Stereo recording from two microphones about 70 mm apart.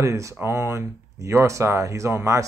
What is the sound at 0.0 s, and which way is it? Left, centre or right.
Speech, right.